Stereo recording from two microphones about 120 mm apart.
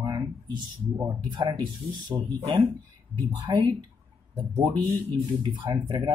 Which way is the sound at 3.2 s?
35° right (ahead or behind).